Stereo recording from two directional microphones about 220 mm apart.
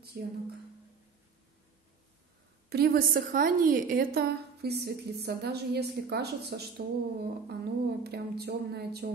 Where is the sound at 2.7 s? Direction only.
40° right (ahead or behind).